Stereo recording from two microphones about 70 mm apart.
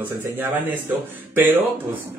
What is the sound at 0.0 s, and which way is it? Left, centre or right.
A man's voice, right.